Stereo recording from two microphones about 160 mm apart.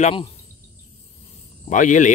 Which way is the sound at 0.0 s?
35° left (ahead or behind).